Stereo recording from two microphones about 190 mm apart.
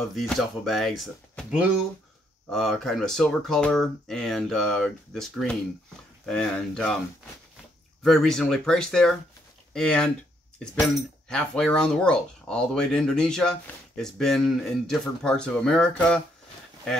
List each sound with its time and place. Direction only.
0.1 s speech: centre (ahead or behind)
8.0 s speech: centre (ahead or behind)
11.2 s speech: 5° left (ahead or behind)